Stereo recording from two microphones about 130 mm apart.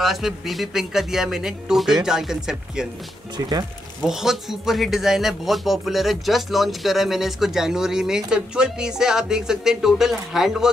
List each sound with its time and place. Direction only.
0.0 s a man's voice: centre (ahead or behind)
3.3 s speech: 30° right (ahead or behind)
4.0 s a man's voice: 5° right (ahead or behind)